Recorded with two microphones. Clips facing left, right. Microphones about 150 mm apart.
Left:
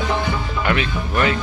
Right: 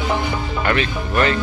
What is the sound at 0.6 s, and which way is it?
Speech, 10° left (ahead or behind).